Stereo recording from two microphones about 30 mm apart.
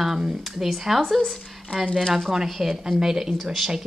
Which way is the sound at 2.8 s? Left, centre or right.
Right.